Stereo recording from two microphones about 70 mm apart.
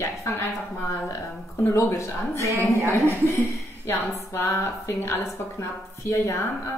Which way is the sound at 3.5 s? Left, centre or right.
Left.